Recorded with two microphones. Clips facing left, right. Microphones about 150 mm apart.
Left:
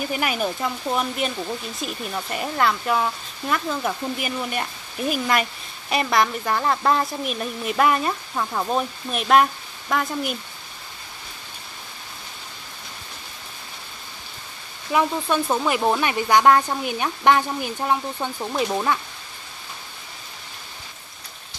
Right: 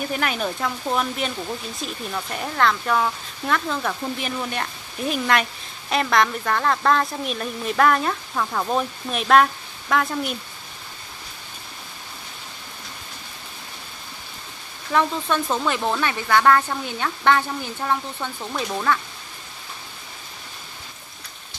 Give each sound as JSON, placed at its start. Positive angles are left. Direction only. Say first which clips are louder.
{"t": 0.1, "sound": "speech", "louder": "left 1 dB", "side_deg": 5}
{"t": 14.9, "sound": "speech", "louder": "even", "side_deg": 10}